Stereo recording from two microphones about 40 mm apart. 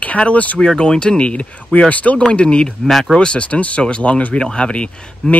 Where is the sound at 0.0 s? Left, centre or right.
Left.